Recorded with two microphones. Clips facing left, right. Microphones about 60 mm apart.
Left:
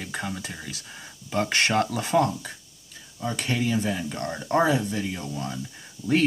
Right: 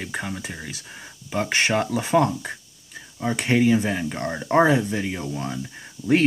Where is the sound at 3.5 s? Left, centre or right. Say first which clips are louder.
Right 7 dB; right.